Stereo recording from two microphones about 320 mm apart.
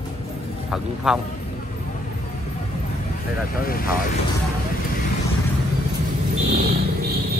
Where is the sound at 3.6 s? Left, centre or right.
Left.